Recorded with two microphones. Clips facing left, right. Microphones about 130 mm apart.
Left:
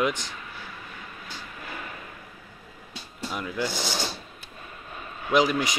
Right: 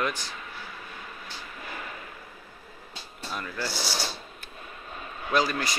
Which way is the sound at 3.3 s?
15° left (ahead or behind).